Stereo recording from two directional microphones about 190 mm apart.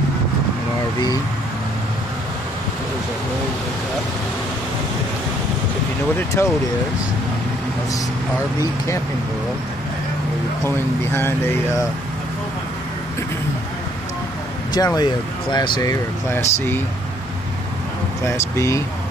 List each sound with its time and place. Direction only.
6.1 s speech: 15° left (ahead or behind)
11.1 s speech: 10° left (ahead or behind)
14.7 s speech: 20° left (ahead or behind)
18.2 s speech: 15° left (ahead or behind)